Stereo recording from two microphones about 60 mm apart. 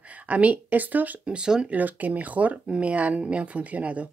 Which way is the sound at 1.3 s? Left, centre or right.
Centre.